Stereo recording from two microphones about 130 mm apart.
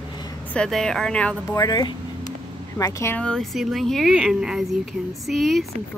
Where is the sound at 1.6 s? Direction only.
30° left (ahead or behind).